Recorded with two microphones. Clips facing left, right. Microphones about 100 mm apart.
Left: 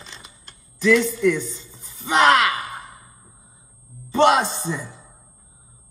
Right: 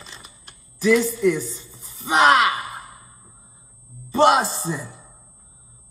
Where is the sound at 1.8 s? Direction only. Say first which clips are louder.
Even; 35° right (ahead or behind).